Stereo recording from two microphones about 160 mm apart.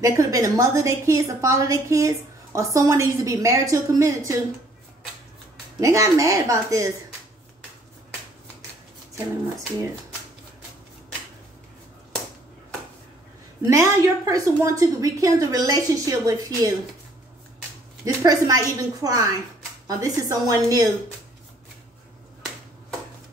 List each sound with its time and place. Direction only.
0.0 s a woman's voice: 20° right (ahead or behind)
5.8 s a woman's voice: 20° right (ahead or behind)
13.6 s a woman's voice: 20° right (ahead or behind)
18.0 s a woman's voice: 20° right (ahead or behind)